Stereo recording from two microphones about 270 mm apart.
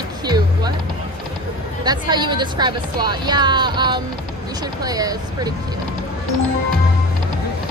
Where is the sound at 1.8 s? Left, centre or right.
Centre.